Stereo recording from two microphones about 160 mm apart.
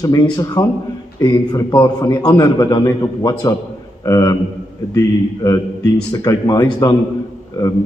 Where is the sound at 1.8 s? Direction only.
25° left (ahead or behind).